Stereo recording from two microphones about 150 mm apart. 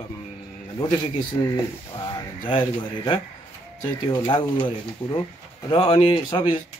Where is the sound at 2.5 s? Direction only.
35° left (ahead or behind).